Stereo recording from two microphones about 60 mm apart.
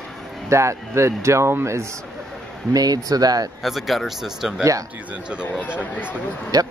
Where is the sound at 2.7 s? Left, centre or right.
Right.